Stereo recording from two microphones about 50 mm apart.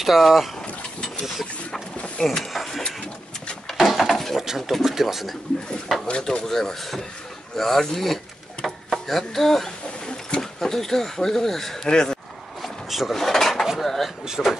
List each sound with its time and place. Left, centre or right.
0.0 s speech: centre
2.0 s a sound: left
2.3 s speech: centre
3.7 s a sound: centre
4.6 s speech: centre
6.0 s speech: left
6.4 s speech: centre
8.6 s a sound: centre
10.4 s speech: centre
12.6 s drawer open or close: centre
13.7 s speech: centre